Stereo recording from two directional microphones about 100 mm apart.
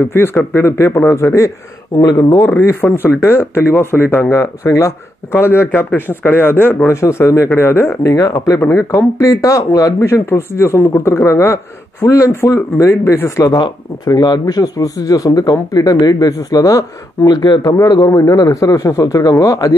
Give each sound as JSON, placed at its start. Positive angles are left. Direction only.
{"t": 0.1, "sound": "speech", "side_deg": 25}
{"t": 2.4, "sound": "speech", "side_deg": 25}
{"t": 8.0, "sound": "speech", "side_deg": 35}
{"t": 13.5, "sound": "speech", "side_deg": 45}